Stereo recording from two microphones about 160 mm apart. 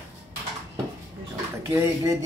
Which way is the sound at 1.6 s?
20° right (ahead or behind).